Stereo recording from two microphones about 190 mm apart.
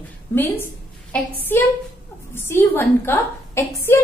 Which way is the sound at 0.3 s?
10° left (ahead or behind).